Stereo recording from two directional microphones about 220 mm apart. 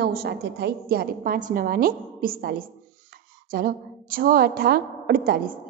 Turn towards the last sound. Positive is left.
turn(degrees=-45)  # may be behind; listen again after turning